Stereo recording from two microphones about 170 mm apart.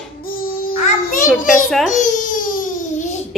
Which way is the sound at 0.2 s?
60° left (ahead or behind).